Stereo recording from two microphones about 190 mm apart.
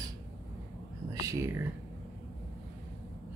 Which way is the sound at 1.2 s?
15° right (ahead or behind).